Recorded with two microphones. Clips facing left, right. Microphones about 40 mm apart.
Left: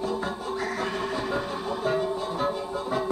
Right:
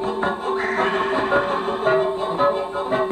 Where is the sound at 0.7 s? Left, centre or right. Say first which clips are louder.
Right 9 dB; right.